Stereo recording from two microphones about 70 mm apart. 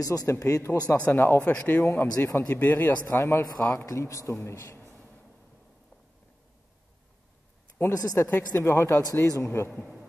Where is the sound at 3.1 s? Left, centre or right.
Left.